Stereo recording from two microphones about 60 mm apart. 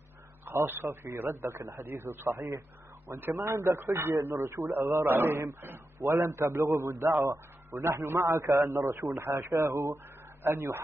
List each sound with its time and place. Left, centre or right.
0.5 s a man's voice: right
3.1 s a man's voice: right
3.4 s a man's voice: right